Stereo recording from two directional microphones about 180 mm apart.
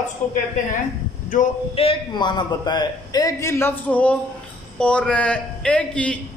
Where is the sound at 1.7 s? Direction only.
30° left (ahead or behind).